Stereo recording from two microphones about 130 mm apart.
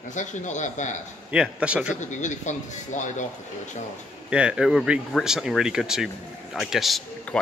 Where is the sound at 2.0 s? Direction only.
70° left (ahead or behind).